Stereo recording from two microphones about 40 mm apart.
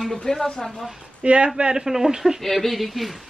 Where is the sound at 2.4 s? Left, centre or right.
Centre.